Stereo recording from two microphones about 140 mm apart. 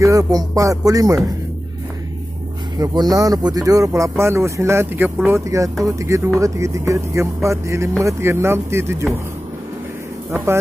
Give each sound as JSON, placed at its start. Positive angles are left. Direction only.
{"t": 0.0, "sound": "speech", "side_deg": -25}
{"t": 2.8, "sound": "speech", "side_deg": -30}